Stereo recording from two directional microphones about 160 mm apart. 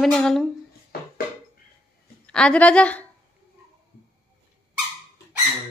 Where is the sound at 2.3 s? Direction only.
5° left (ahead or behind).